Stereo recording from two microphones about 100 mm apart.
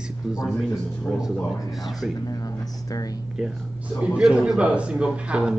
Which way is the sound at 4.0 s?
5° right (ahead or behind).